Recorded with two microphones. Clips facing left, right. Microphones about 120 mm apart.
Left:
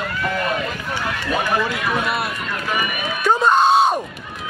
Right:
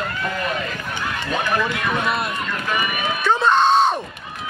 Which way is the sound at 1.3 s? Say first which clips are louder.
Left 1 dB; 5° left (ahead or behind).